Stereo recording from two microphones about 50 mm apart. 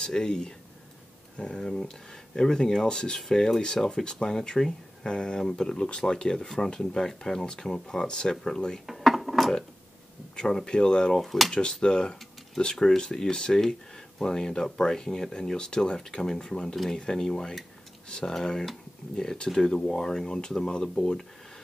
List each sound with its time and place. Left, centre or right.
0.0 s speech: centre
8.8 s a sound: centre
10.3 s speech: centre
11.2 s speech: centre
11.5 s speech: centre